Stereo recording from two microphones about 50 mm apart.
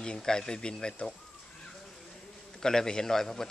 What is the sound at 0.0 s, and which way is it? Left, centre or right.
Speech, centre.